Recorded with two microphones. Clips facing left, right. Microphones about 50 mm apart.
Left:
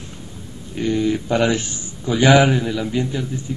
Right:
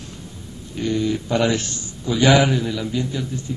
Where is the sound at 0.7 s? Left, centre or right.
Centre.